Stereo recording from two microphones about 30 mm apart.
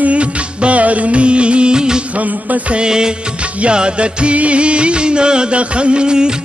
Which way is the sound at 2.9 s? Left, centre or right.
Right.